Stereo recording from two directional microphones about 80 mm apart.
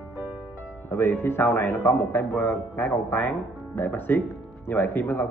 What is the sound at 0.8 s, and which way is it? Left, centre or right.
Speech, left.